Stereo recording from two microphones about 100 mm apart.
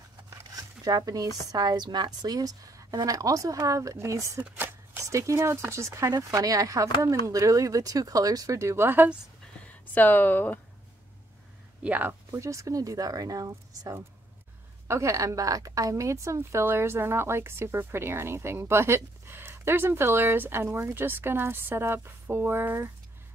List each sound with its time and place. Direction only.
0.3 s zipper: 35° right (ahead or behind)
1.5 s a woman's voice: 40° right (ahead or behind)
4.4 s a sound: 20° right (ahead or behind)
5.0 s a woman's voice: 30° right (ahead or behind)
9.7 s speech: 15° left (ahead or behind)
11.8 s a woman's voice: 15° right (ahead or behind)